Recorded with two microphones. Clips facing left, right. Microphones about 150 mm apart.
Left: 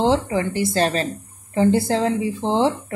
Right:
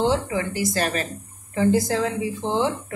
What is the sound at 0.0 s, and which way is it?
A woman's voice, 30° left (ahead or behind).